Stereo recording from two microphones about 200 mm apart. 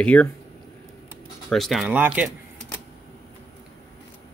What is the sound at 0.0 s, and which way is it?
Speech, 5° left (ahead or behind).